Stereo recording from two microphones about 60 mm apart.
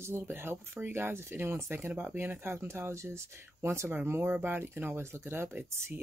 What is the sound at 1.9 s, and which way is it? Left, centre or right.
Speech, right.